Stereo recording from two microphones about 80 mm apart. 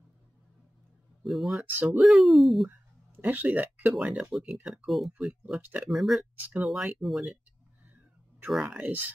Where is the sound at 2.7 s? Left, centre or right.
Right.